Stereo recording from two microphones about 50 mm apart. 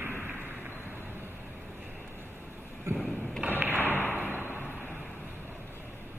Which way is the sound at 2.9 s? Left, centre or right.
Centre.